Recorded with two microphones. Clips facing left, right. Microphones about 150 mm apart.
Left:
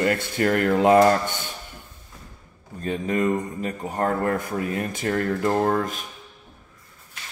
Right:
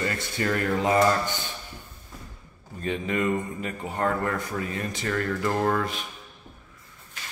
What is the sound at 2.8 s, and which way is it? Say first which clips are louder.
Speech: left 3 dB; 40° left (ahead or behind).